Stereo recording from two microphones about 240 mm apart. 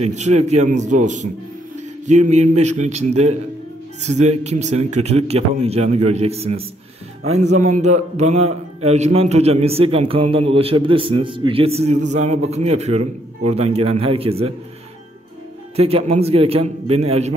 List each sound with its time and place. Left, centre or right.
0.0 s a man's voice: right
15.7 s a man's voice: right